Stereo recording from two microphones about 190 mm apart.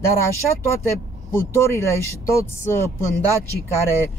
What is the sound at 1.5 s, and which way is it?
Speech, 15° left (ahead or behind).